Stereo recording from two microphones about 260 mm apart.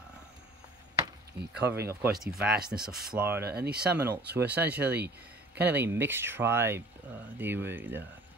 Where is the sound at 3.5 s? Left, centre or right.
Right.